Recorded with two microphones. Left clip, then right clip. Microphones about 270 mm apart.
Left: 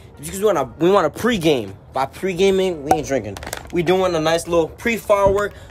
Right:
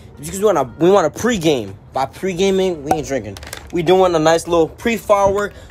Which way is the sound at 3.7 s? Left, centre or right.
Centre.